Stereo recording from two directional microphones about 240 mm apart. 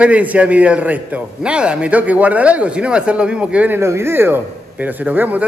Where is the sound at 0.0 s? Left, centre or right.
Centre.